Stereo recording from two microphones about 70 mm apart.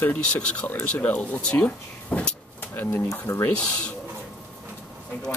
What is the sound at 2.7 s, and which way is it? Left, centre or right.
Speech, left.